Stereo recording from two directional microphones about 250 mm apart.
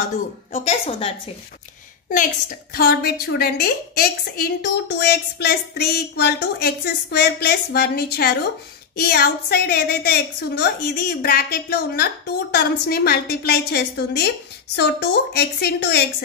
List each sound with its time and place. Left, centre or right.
0.0 s a woman's voice: left
2.7 s a woman's voice: left